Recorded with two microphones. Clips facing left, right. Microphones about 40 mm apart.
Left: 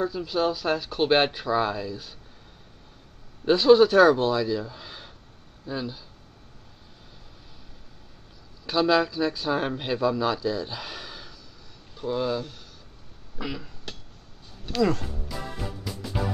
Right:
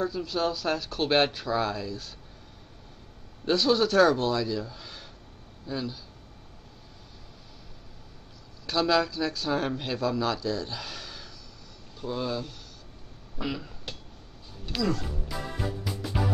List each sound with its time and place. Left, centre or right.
0.0 s a man's voice: centre
3.4 s a man's voice: centre
8.6 s a man's voice: centre
13.4 s speech: centre
14.8 s speech: left
15.2 s music: centre